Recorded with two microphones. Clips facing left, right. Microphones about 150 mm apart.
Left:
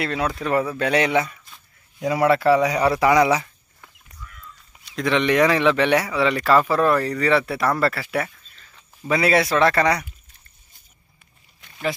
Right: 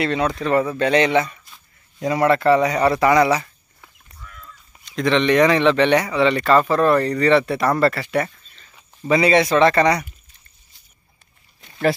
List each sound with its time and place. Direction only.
0.0 s speech: 5° left (ahead or behind)
4.8 s speech: 5° left (ahead or behind)